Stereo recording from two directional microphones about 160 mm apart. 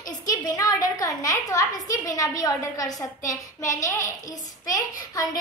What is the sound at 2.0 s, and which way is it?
A child's voice, 20° left (ahead or behind).